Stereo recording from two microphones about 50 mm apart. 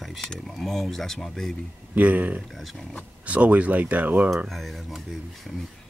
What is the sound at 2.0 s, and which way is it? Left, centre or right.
Speech, right.